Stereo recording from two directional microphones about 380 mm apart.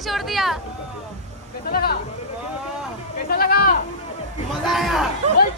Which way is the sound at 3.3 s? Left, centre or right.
Left.